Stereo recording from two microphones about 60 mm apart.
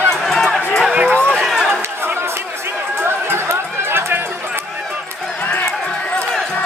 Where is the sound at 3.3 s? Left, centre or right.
Right.